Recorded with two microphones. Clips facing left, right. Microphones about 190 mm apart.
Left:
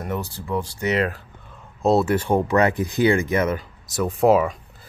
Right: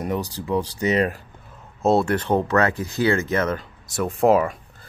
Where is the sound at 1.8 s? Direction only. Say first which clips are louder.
Left 1 dB; centre (ahead or behind).